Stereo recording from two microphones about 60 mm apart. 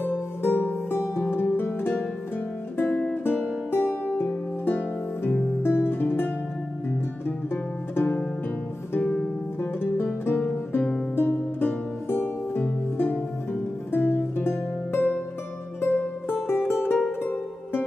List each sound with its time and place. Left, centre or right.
0.4 s music: left
7.9 s music: left
9.0 s music: centre
9.6 s music: left
11.1 s music: left